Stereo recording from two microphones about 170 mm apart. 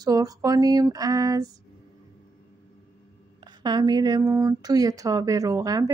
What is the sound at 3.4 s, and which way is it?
Speech, 25° right (ahead or behind).